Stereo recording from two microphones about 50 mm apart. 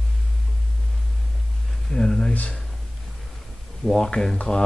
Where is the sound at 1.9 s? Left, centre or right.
Centre.